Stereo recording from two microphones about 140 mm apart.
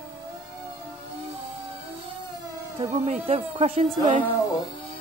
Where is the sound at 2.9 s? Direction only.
50° right (ahead or behind).